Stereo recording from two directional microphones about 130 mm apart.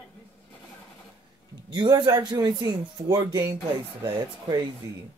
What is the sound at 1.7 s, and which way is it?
Speech, 35° right (ahead or behind).